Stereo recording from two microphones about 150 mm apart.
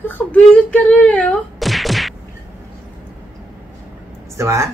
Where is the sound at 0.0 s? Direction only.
10° left (ahead or behind).